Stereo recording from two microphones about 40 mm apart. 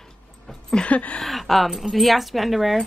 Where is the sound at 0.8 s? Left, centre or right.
Left.